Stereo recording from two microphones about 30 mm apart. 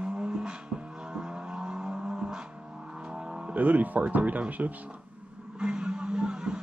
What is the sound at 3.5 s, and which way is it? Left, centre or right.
Speech, right.